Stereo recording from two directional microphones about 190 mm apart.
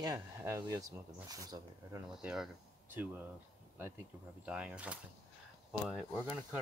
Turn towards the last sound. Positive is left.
turn(degrees=0)  # may be behind; listen again after turning